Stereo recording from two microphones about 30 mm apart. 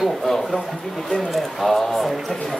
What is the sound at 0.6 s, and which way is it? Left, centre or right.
Speech, centre.